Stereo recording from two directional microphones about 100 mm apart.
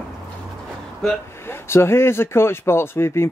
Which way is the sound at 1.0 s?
5° left (ahead or behind).